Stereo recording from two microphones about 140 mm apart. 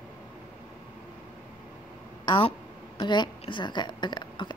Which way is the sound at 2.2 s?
35° left (ahead or behind).